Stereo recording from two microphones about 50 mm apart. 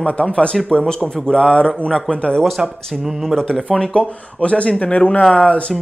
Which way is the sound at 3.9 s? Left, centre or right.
Left.